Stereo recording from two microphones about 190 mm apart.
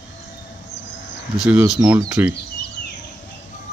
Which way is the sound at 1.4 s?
5° right (ahead or behind).